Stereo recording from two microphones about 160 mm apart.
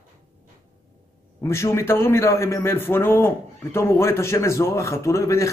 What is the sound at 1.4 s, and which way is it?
A man's voice, 15° left (ahead or behind).